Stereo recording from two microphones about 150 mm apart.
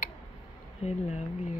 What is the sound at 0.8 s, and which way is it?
Speech, 45° left (ahead or behind).